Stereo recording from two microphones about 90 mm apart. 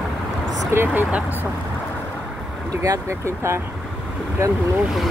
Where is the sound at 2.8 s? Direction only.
35° right (ahead or behind).